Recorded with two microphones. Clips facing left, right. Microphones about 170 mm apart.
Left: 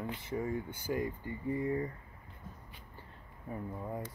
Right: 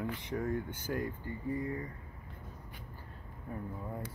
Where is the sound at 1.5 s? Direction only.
25° left (ahead or behind).